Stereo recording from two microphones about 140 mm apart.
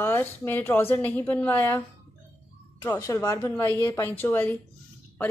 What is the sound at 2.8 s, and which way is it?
A woman's voice, 20° left (ahead or behind).